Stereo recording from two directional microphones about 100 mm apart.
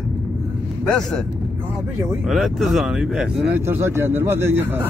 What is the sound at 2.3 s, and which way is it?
Speech, centre (ahead or behind).